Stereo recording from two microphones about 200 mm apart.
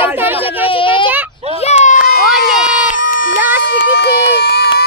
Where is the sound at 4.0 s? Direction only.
55° left (ahead or behind).